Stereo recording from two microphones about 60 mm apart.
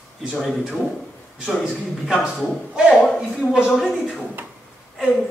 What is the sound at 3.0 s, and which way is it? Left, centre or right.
Speech, centre.